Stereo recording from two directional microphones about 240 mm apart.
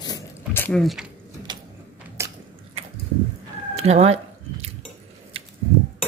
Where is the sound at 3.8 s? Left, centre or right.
Right.